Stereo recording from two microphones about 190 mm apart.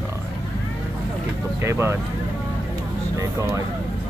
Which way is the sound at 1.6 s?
15° right (ahead or behind).